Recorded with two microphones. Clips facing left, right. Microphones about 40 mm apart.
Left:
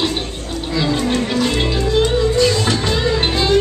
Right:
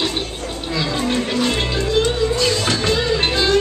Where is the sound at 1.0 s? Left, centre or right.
Centre.